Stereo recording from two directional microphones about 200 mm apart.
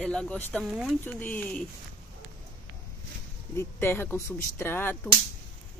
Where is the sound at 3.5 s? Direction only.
10° left (ahead or behind).